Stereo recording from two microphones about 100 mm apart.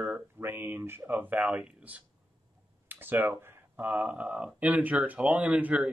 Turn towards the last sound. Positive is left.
turn(degrees=-10)  # may be behind; listen again after turning